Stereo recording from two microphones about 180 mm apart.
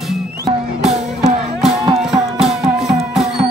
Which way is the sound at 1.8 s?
25° right (ahead or behind).